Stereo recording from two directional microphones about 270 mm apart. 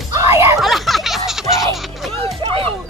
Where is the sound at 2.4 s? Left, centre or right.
Centre.